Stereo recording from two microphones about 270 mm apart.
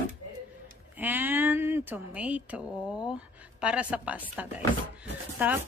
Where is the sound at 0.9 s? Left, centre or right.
Centre.